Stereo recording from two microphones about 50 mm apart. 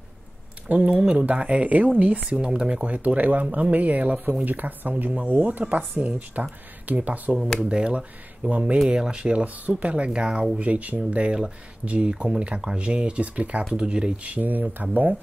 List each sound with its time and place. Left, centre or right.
0.7 s speech: right
7.6 s speech: right
8.8 s speech: centre; by 15.1 s right